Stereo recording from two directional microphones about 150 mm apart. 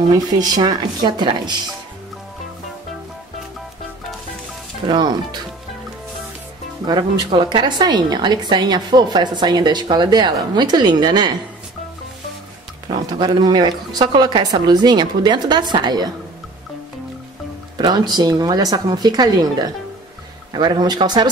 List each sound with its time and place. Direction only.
0.1 s a woman's voice: 25° right (ahead or behind)
4.8 s a woman's voice: 30° right (ahead or behind)
6.9 s a woman's voice: 30° right (ahead or behind)
12.8 s a woman's voice: 30° right (ahead or behind)
17.7 s a woman's voice: 30° right (ahead or behind)